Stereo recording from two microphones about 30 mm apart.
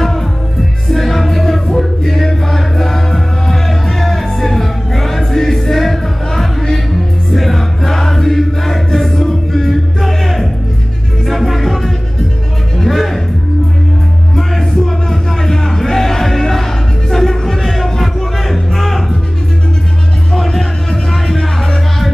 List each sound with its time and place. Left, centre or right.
0.8 s music: centre
14.3 s music: centre
20.4 s music: centre